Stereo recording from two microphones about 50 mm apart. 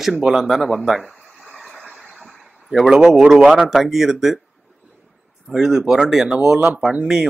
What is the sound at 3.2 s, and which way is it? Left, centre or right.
Speech, centre.